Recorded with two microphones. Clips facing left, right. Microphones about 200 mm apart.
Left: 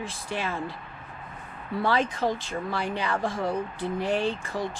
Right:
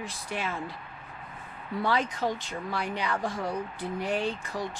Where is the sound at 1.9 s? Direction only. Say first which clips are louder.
Left 3 dB; 30° left (ahead or behind).